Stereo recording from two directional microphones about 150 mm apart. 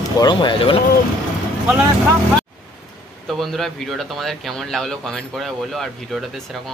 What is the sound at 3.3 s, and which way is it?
Speech, centre (ahead or behind).